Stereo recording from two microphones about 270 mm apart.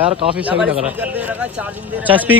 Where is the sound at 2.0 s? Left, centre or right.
Centre.